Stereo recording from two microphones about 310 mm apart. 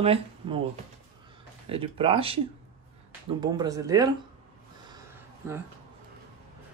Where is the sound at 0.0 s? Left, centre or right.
Centre.